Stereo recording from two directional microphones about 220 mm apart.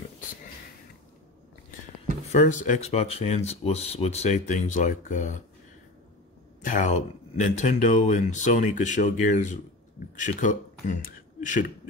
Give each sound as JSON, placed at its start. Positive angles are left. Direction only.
{"t": 2.3, "sound": "speech", "side_deg": 35}
{"t": 6.6, "sound": "speech", "side_deg": 35}